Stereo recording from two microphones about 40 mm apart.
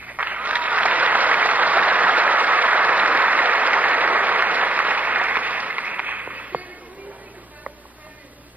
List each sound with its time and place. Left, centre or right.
0.0 s applause: right